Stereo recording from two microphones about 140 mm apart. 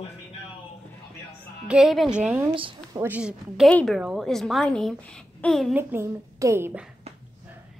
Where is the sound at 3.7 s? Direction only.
10° left (ahead or behind).